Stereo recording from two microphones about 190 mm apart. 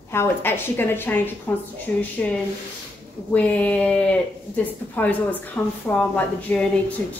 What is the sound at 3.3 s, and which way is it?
Speech, 5° left (ahead or behind).